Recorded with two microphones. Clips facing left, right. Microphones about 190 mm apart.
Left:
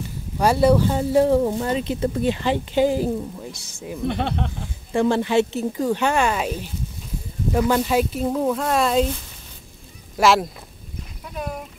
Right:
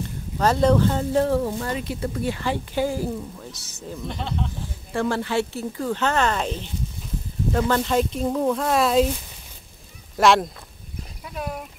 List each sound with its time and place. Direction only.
0.4 s speech: 10° left (ahead or behind)
4.1 s speech: 65° left (ahead or behind)
4.9 s speech: 20° left (ahead or behind); by 9.0 s centre (ahead or behind)
10.1 s speech: centre (ahead or behind)